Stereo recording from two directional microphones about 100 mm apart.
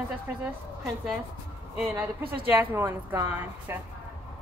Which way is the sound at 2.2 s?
20° right (ahead or behind).